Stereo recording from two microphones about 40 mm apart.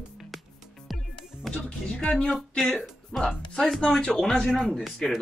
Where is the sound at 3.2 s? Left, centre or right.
Left.